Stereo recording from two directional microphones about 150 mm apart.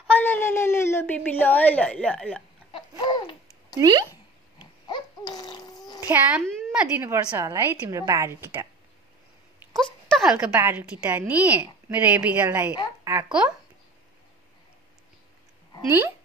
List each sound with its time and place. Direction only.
0.0 s speech: 10° left (ahead or behind)
2.7 s babbling: 30° left (ahead or behind)
3.8 s a woman's voice: 30° right (ahead or behind)
4.6 s babbling: 30° left (ahead or behind)
5.9 s a woman's voice: 15° right (ahead or behind)
9.8 s a sound: centre (ahead or behind)
10.5 s a woman's voice: 15° right (ahead or behind)